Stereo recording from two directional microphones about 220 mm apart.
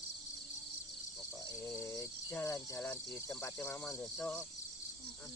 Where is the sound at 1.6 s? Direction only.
15° left (ahead or behind).